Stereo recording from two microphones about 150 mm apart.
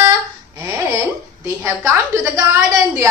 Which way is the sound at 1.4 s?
20° right (ahead or behind).